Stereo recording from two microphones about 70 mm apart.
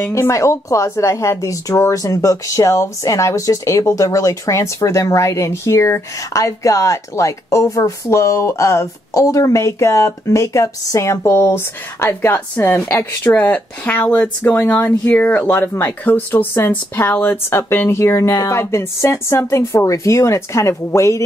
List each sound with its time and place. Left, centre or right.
0.1 s speech: left